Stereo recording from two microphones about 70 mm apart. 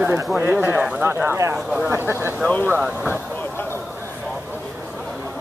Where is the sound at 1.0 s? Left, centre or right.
Right.